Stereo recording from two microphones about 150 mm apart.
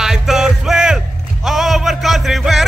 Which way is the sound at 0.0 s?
5° right (ahead or behind).